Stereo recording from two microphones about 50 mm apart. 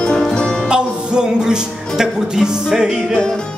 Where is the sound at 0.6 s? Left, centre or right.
Centre.